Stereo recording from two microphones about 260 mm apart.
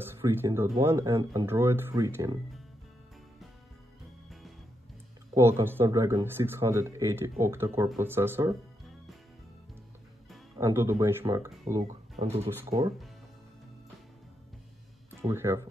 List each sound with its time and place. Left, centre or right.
0.0 s speech: centre
5.3 s speech: centre
10.6 s speech: centre
12.2 s speech: right
12.6 s speech: centre
15.2 s speech: centre